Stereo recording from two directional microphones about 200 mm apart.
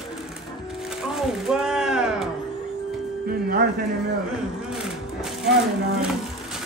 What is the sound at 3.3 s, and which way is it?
Music, 45° right (ahead or behind).